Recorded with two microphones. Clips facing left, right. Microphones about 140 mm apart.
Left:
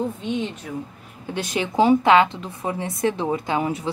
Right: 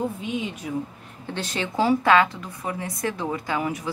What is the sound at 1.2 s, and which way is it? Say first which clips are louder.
A woman's voice: left 4 dB; 10° left (ahead or behind).